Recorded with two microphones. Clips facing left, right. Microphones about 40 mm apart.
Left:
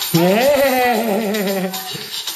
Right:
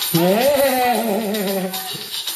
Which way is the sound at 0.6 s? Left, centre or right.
Left.